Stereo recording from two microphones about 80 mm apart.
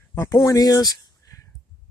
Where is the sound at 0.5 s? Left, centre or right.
Left.